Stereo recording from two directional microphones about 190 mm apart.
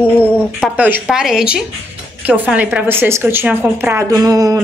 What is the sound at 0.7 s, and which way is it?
A woman's voice, 10° right (ahead or behind).